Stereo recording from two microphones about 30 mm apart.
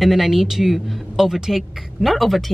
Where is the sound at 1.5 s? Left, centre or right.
Centre.